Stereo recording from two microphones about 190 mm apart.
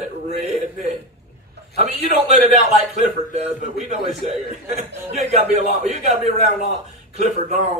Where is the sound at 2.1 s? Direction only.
40° right (ahead or behind).